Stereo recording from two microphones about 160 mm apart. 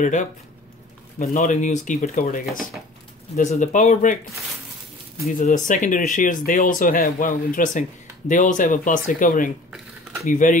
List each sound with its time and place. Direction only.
0.0 s speech: 50° left (ahead or behind)
5.4 s speech: 50° left (ahead or behind)